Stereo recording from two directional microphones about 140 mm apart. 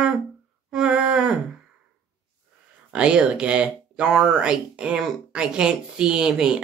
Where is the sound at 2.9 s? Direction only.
5° right (ahead or behind).